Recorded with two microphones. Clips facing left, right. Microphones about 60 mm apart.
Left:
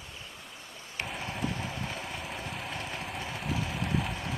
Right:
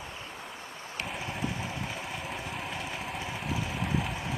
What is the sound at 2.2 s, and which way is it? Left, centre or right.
Lawn mower, centre.